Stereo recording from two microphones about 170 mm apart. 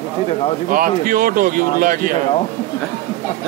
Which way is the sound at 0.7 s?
55° right (ahead or behind).